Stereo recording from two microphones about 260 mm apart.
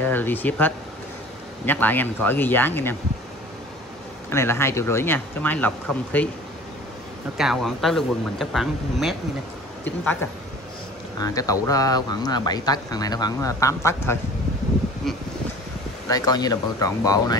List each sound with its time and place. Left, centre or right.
0.0 s speech: centre
4.3 s speech: centre
7.3 s a man's voice: centre
11.1 s a man's voice: centre
16.1 s speech: centre